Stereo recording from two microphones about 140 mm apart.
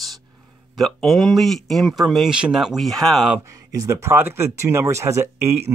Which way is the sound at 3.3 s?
25° right (ahead or behind).